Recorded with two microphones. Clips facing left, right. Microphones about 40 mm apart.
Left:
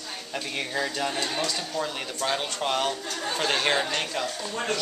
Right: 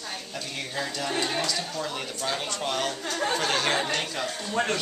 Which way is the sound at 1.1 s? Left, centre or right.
Centre.